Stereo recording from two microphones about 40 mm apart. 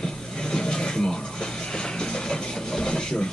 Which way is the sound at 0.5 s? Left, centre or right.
Centre.